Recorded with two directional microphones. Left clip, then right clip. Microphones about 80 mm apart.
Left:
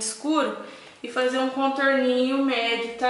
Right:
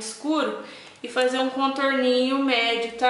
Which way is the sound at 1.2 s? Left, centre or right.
Centre.